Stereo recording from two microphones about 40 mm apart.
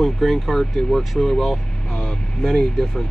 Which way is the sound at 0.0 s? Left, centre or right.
Centre.